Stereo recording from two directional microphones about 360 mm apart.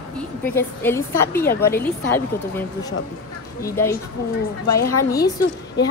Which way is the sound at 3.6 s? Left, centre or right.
Centre.